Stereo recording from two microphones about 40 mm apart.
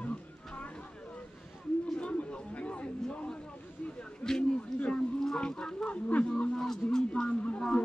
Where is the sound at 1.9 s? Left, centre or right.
Left.